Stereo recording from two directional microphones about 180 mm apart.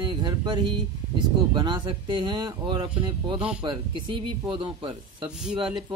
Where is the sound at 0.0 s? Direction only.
25° right (ahead or behind).